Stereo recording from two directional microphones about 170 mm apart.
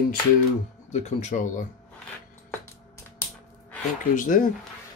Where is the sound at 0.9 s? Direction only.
40° left (ahead or behind).